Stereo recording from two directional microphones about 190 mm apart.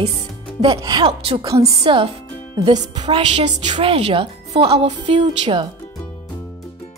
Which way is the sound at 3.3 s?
35° right (ahead or behind).